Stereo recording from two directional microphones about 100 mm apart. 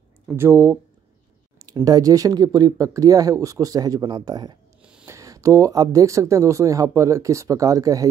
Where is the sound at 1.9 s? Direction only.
35° right (ahead or behind).